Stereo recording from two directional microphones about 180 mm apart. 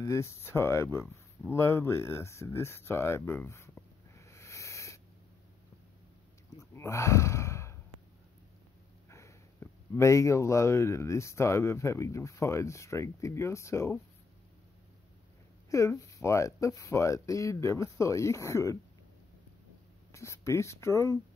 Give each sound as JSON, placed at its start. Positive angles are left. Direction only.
{"t": 0.0, "sound": "speech", "side_deg": 15}
{"t": 6.6, "sound": "gasp", "side_deg": 15}
{"t": 9.1, "sound": "speech", "side_deg": 15}
{"t": 15.7, "sound": "speech", "side_deg": 15}
{"t": 20.1, "sound": "speech", "side_deg": 15}